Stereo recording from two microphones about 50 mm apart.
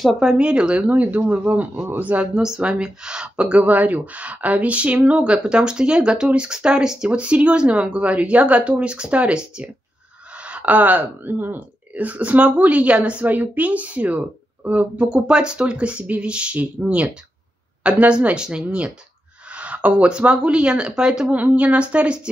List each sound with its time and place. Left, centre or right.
0.2 s speech: centre
0.8 s speech: right
2.6 s speech: centre
7.1 s speech: right
15.0 s speech: centre
21.3 s speech: right